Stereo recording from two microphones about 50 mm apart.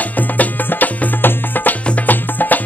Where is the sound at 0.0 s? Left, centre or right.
Left.